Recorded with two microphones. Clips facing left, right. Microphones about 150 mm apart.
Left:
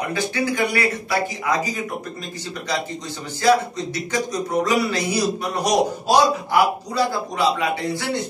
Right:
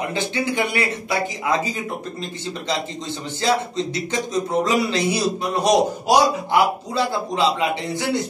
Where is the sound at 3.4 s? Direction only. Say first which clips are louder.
Left 3 dB; 25° right (ahead or behind).